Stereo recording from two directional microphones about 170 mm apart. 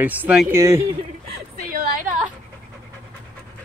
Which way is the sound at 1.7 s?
55° right (ahead or behind).